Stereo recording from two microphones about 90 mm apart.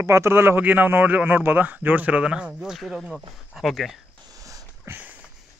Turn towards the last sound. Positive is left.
turn(degrees=-40)  # may be behind; listen again after turning